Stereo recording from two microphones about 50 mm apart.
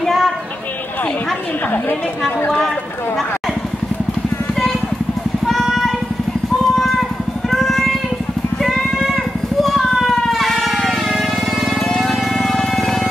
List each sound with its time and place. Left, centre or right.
0.0 s a sound: centre
1.7 s a woman's voice: left
5.5 s music: centre
9.0 s vehicle: centre